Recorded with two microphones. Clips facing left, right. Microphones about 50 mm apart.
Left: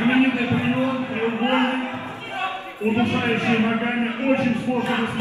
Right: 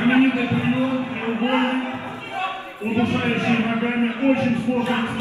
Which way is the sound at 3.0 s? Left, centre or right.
Left.